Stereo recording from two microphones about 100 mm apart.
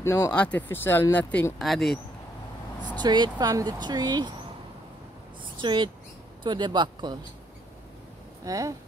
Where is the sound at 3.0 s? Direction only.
45° right (ahead or behind).